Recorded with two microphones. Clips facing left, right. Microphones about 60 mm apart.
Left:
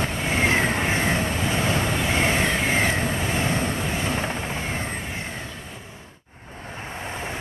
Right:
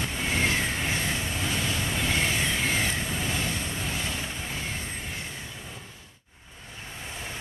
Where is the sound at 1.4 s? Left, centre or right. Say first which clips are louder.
Left 6 dB; left.